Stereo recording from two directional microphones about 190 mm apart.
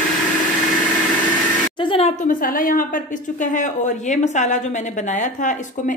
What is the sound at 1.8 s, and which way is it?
A woman's voice, 30° left (ahead or behind).